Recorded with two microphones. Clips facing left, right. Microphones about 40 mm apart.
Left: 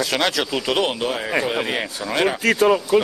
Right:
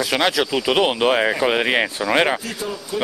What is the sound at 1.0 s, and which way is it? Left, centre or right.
Speech, right.